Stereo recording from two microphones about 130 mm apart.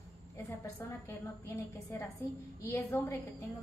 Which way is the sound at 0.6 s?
20° left (ahead or behind).